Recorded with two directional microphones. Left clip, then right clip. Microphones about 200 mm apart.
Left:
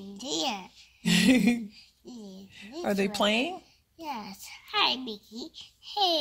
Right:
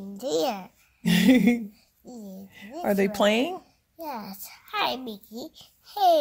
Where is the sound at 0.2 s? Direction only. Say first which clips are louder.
Right 5 dB; 55° right (ahead or behind).